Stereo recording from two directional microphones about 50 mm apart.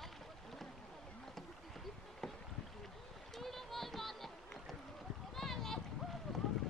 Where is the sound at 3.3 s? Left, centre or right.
Centre.